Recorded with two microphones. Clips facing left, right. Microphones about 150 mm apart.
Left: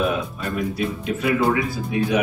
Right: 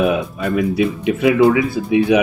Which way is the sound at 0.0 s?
85° right.